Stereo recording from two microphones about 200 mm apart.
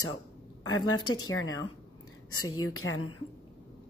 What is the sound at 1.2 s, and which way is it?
Speech, 90° left.